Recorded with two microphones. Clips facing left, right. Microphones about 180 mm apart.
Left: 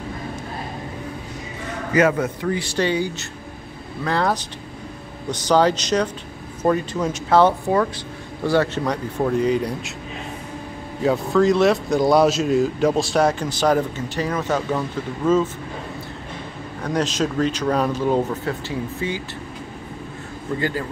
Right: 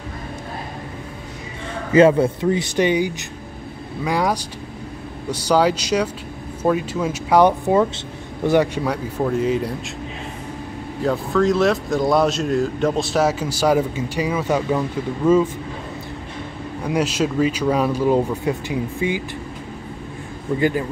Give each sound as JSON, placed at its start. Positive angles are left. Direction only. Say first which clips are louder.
{"t": 1.9, "sound": "a man's voice", "louder": "right 5 dB", "side_deg": -30}
{"t": 11.0, "sound": "a man's voice", "louder": "left 1 dB", "side_deg": 0}
{"t": 16.8, "sound": "speech", "louder": "right 1 dB", "side_deg": -10}
{"t": 20.5, "sound": "speech", "louder": "right 5 dB", "side_deg": -15}